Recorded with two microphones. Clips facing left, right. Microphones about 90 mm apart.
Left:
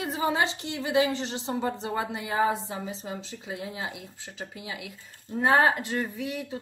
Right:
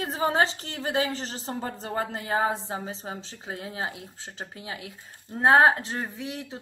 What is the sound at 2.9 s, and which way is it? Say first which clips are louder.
Speech: left 1 dB; 35° right (ahead or behind).